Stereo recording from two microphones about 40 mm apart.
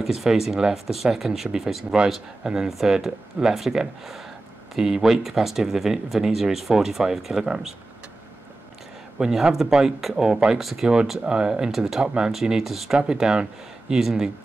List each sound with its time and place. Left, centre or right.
0.0 s speech: centre
9.2 s speech: centre
10.6 s speech: centre
11.2 s speech: right
11.7 s speech: centre
12.0 s speech: right
12.3 s speech: centre
12.9 s speech: centre